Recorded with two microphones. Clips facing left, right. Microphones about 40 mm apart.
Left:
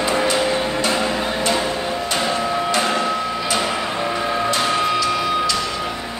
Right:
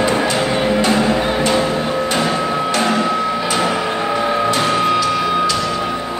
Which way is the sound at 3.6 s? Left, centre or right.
Centre.